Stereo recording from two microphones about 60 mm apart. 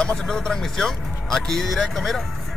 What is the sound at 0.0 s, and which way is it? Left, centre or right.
Speech, centre.